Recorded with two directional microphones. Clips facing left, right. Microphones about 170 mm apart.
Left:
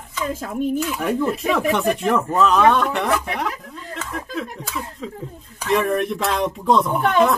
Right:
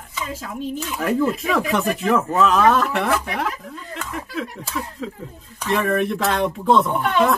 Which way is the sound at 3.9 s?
Centre (ahead or behind).